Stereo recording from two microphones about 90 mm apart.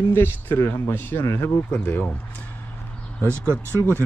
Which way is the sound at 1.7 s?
20° left (ahead or behind).